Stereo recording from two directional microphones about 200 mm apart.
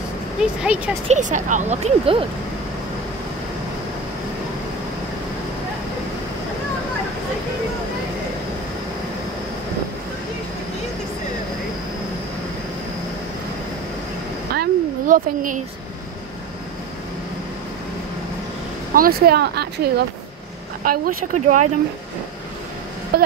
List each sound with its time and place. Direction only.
0.4 s speech: 5° right (ahead or behind)
1.0 s speech: 35° right (ahead or behind)
14.5 s a sound: 50° right (ahead or behind)
18.9 s speech: 50° right (ahead or behind)
23.1 s speech: 50° right (ahead or behind)